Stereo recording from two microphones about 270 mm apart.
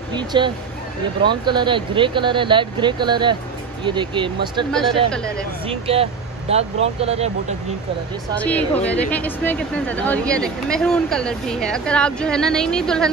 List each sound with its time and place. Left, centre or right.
0.1 s speech: centre
5.1 s speech: centre
5.7 s speech: right
8.4 s speech: centre